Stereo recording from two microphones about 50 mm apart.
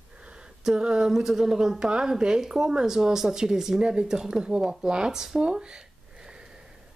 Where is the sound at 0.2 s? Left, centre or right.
Centre.